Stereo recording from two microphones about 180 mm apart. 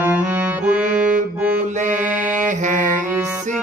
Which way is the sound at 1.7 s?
45° right (ahead or behind).